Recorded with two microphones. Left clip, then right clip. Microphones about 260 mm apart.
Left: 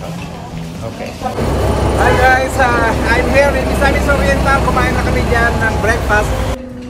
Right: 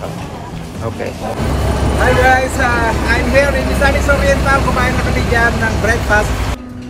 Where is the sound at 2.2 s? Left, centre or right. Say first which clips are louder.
Left 1 dB; centre.